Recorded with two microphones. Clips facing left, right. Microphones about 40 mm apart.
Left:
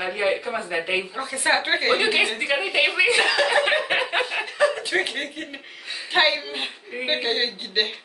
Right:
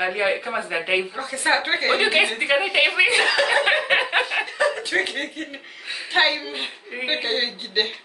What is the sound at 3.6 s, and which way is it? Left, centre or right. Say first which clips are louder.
Speech: right 2 dB; centre.